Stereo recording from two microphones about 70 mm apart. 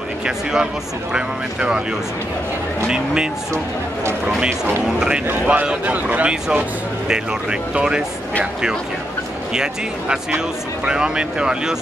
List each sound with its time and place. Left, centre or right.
0.2 s speech: centre
5.3 s speech: right
7.7 s speech: centre
9.5 s speech: centre